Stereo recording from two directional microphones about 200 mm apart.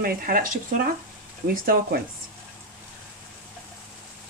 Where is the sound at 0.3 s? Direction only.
45° right (ahead or behind).